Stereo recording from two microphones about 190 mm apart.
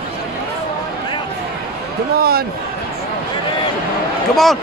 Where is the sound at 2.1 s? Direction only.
55° right (ahead or behind).